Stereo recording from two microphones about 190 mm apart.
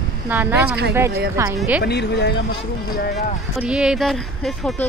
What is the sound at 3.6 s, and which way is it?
Speech, 5° right (ahead or behind).